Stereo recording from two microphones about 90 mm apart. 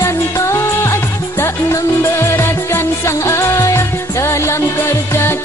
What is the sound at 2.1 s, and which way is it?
Music, 30° left (ahead or behind).